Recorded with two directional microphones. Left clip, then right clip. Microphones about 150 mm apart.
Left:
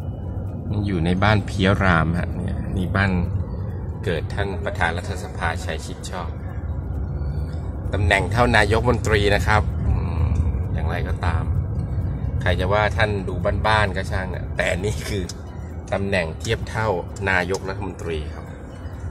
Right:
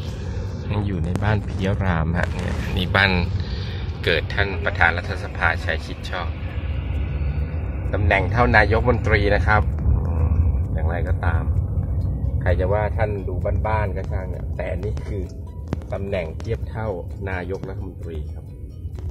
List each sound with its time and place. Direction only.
0.7 s speech: 25° left (ahead or behind)
2.7 s speech: 5° left (ahead or behind)
4.0 s speech: 20° left (ahead or behind)
7.9 s a man's voice: 30° left (ahead or behind)
10.8 s speech: 25° left (ahead or behind)
12.4 s a man's voice: 35° left (ahead or behind)
13.4 s speech: 55° left (ahead or behind)
16.7 s speech: 25° left (ahead or behind)